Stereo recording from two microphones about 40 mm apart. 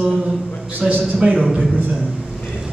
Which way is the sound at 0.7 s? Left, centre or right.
Right.